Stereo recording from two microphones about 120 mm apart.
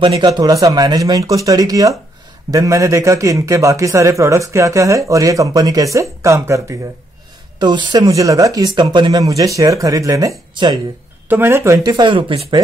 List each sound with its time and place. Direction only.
0.0 s a man's voice: 35° right (ahead or behind)
7.6 s a man's voice: 40° right (ahead or behind)
10.5 s speech: 40° right (ahead or behind)
11.2 s a man's voice: 20° right (ahead or behind)
11.9 s speech: 40° right (ahead or behind)